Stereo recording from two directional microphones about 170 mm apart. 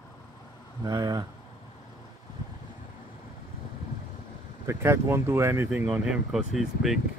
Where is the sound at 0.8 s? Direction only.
25° right (ahead or behind).